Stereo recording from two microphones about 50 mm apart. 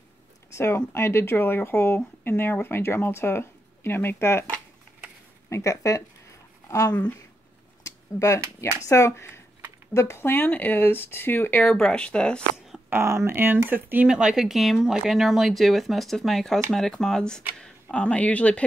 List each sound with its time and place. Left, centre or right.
0.6 s speech: left
5.5 s speech: left
7.8 s a sound: left
8.8 s speech: left
10.3 s speech: left
11.6 s speech: centre
12.9 s speech: right
14.0 s speech: centre; by 18.6 s left